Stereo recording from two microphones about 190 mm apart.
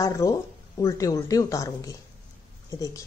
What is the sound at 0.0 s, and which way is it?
Speech, 15° left (ahead or behind).